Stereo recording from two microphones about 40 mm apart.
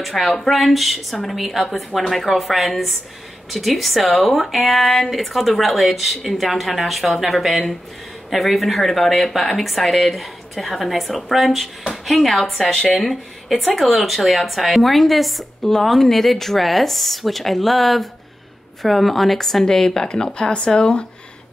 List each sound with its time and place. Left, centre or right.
0.0 s speech: centre
20.1 s speech: left